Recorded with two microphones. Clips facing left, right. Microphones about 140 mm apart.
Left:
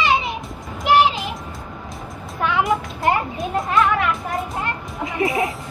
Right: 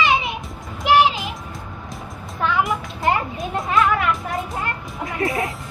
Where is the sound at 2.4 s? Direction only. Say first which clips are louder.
Left 1 dB; 20° left (ahead or behind).